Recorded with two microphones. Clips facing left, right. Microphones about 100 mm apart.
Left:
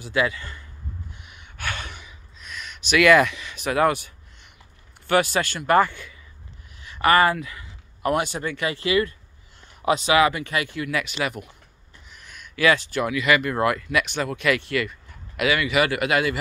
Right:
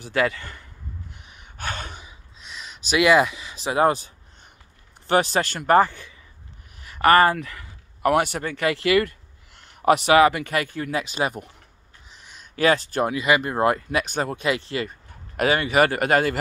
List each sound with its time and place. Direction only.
0.0 s speech: 50° right (ahead or behind)
1.2 s gasp: 35° right (ahead or behind)
3.1 s speech: 20° right (ahead or behind)
6.8 s speech: 45° right (ahead or behind)
10.9 s speech: 30° right (ahead or behind)
12.1 s a sound: 25° right (ahead or behind)
12.4 s speech: 40° right (ahead or behind)
14.4 s speech: 25° right (ahead or behind); by 16.3 s 45° right (ahead or behind)